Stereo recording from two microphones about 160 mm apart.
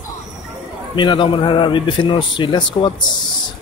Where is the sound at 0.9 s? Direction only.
30° left (ahead or behind).